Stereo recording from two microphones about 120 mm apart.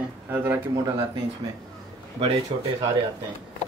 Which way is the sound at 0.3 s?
15° right (ahead or behind).